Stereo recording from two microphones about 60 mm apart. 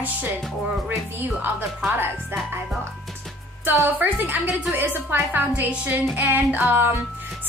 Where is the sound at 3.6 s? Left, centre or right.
Right.